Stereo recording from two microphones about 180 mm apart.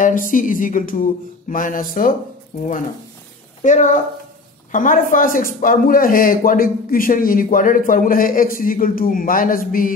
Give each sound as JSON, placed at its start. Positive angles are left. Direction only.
{"t": 0.0, "sound": "speech", "side_deg": 50}
{"t": 3.6, "sound": "speech", "side_deg": 45}